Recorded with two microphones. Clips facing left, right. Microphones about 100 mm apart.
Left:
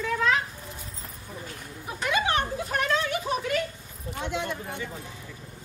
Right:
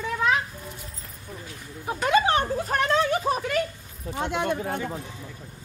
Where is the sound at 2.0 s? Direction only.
35° right (ahead or behind).